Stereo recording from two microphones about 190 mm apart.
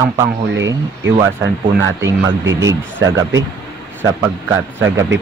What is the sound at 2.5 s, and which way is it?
Speech, 15° right (ahead or behind).